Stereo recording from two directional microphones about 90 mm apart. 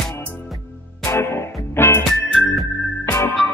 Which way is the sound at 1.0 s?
30° left (ahead or behind).